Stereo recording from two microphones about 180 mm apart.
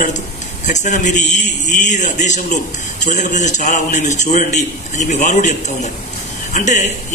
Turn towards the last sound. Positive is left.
turn(degrees=40)  # may be behind; listen again after turning